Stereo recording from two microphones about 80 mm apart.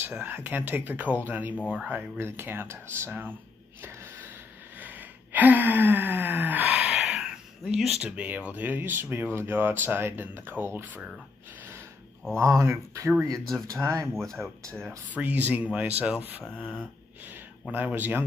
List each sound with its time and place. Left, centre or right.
0.2 s speech: right
3.8 s a sound: right
4.7 s gasp: right
7.0 s speech: centre; by 11.0 s right
12.4 s speech: right
14.1 s speech: centre
15.0 s speech: centre
17.6 s speech: centre